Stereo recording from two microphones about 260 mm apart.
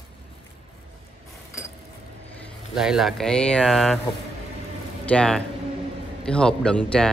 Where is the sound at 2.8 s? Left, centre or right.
Centre.